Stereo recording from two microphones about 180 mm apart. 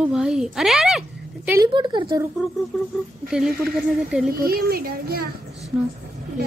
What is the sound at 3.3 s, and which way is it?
Speech, 5° right (ahead or behind).